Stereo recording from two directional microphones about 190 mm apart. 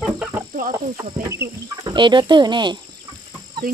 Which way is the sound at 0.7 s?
15° right (ahead or behind).